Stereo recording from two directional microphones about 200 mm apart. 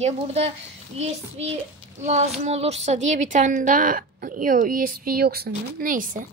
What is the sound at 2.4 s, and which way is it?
A woman's voice, 30° right (ahead or behind).